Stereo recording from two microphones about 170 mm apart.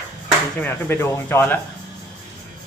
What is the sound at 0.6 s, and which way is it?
Speech, 10° left (ahead or behind).